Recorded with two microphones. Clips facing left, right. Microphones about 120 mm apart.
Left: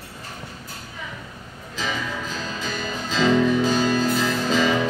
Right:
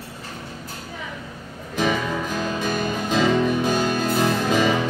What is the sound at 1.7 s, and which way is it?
Music, 55° right (ahead or behind).